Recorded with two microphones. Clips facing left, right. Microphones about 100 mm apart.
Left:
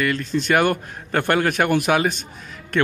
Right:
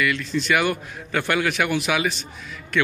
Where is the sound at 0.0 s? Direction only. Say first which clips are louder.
Left 2 dB; 45° left (ahead or behind).